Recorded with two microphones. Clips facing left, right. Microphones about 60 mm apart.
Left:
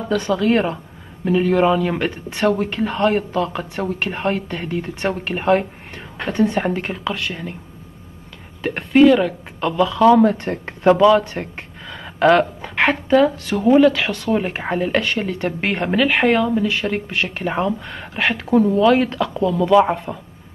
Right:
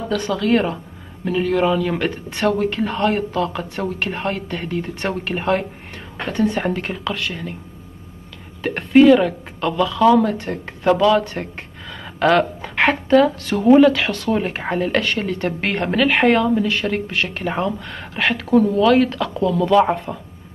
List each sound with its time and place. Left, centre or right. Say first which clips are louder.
0.1 s speech: left 1 dB; centre
8.6 s speech: right 1 dB; centre
10.3 s speech: left 1 dB; left
10.8 s speech: left 3 dB; centre
11.9 s a sound: left 2 dB; centre
12.6 s speech: even; centre
18.4 s speech: left 1 dB; centre